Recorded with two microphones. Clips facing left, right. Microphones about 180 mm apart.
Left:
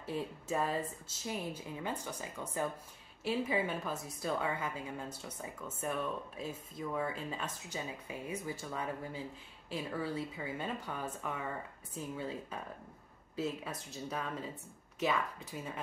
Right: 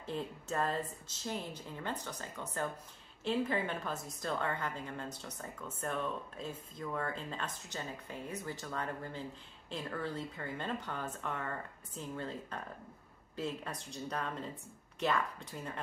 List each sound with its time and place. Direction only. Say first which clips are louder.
0.0 s a woman's voice: left 1 dB; 10° left (ahead or behind)